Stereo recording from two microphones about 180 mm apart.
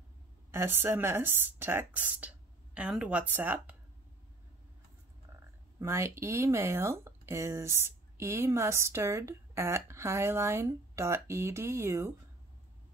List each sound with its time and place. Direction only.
0.5 s speech: 15° right (ahead or behind)
5.8 s speech: 15° right (ahead or behind)